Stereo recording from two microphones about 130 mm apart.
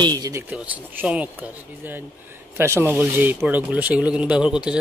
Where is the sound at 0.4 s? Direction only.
15° right (ahead or behind).